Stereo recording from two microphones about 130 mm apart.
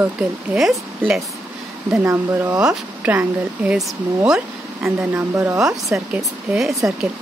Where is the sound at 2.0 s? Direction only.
15° right (ahead or behind).